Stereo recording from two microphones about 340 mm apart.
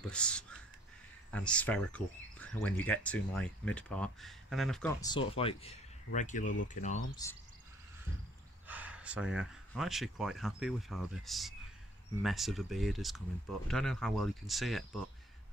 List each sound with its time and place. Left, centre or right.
0.1 s speech: centre; by 7.0 s left
7.2 s speech: centre
8.6 s speech: centre